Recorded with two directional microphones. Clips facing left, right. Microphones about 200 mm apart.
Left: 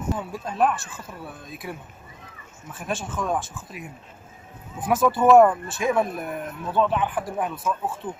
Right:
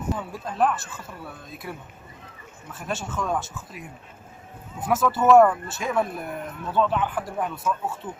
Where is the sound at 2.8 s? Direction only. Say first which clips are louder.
Left 1 dB; 10° left (ahead or behind).